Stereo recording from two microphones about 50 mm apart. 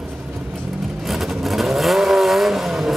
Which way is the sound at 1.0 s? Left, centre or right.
Centre.